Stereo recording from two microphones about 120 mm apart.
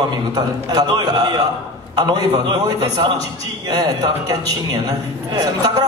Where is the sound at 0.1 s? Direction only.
35° right (ahead or behind).